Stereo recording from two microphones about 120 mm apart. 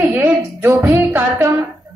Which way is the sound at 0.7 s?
20° right (ahead or behind).